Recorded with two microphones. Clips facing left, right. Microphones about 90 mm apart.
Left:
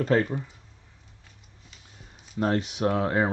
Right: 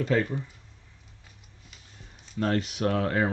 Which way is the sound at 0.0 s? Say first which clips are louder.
Left 2 dB; 40° left (ahead or behind).